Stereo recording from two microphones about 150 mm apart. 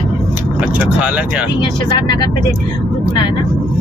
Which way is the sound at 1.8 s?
30° left (ahead or behind).